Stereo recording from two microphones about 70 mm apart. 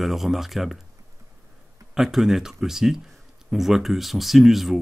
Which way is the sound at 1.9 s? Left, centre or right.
Centre.